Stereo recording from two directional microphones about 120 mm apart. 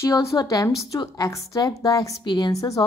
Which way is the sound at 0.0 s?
25° left (ahead or behind).